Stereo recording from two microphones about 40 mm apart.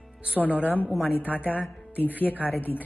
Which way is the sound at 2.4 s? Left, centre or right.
Right.